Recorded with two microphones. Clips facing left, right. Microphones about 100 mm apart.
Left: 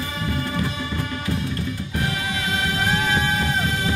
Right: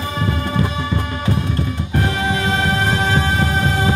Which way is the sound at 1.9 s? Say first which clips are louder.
Right 8 dB; 35° right (ahead or behind).